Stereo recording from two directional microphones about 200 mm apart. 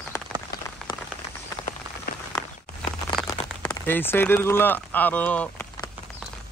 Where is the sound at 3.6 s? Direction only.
10° left (ahead or behind).